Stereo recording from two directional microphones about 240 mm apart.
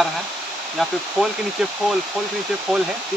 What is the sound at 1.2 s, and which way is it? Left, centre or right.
Speech, centre.